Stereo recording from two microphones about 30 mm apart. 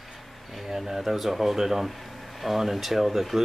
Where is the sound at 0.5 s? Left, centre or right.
Centre.